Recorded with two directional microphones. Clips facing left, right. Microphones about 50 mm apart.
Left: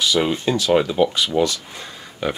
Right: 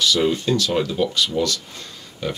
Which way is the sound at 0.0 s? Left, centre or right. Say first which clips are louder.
Even; centre.